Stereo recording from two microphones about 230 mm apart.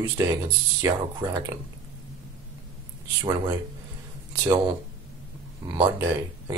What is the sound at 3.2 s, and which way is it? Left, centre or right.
Speech, centre.